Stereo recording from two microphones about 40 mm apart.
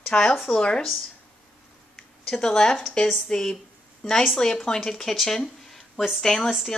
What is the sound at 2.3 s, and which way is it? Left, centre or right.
A woman's voice, centre.